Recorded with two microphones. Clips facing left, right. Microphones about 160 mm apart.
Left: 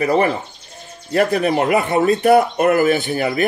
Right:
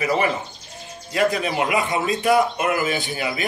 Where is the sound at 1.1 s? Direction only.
55° left (ahead or behind).